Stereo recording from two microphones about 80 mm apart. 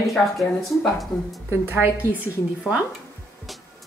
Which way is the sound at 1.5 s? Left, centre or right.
Right.